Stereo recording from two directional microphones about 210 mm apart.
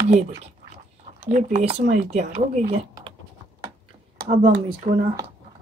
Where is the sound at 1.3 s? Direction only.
35° right (ahead or behind).